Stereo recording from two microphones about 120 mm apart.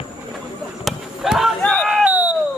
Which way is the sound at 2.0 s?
15° right (ahead or behind).